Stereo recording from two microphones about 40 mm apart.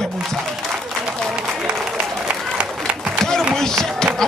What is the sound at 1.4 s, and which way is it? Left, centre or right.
Applause, centre.